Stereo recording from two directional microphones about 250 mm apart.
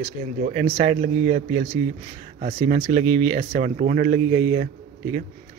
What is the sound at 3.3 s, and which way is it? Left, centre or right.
Speech, right.